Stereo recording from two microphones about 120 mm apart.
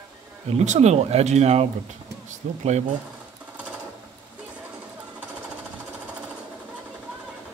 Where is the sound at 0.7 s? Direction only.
65° right (ahead or behind).